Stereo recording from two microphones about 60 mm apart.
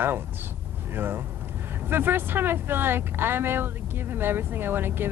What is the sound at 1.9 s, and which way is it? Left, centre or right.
Speech, right.